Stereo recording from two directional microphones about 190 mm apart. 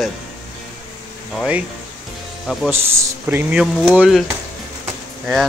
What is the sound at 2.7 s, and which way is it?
Speech, 10° right (ahead or behind).